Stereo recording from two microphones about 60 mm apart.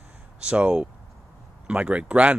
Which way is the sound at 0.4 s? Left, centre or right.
Centre.